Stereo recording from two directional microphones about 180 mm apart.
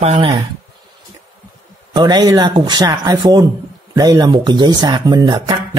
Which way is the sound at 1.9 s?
25° right (ahead or behind).